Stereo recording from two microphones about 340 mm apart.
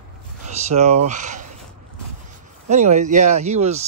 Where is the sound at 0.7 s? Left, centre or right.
Centre.